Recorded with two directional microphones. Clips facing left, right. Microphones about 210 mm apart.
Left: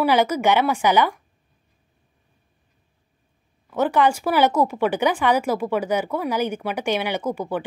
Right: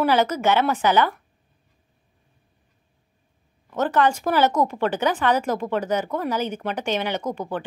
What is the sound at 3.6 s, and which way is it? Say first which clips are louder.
Speech: left 1 dB; 10° left (ahead or behind).